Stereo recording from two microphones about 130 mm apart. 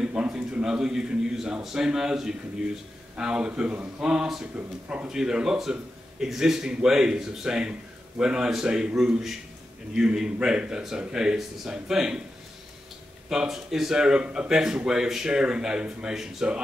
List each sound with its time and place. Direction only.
0.0 s a man's voice: 5° right (ahead or behind)
13.3 s a man's voice: 5° right (ahead or behind)